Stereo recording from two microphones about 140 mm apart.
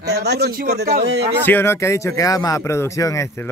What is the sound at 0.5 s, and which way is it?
Speech, 90° right.